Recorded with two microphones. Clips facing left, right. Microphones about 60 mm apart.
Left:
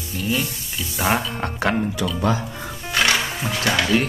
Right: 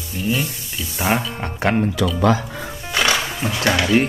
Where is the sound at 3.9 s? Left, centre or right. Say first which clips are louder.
Right 4 dB; right.